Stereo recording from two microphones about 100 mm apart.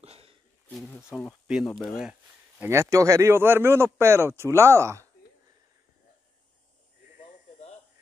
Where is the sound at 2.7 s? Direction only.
30° right (ahead or behind).